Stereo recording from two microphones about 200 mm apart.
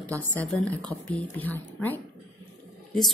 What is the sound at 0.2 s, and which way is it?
A woman's voice, 10° left (ahead or behind).